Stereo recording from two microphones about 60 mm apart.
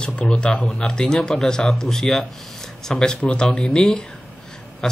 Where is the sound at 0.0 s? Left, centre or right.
Left.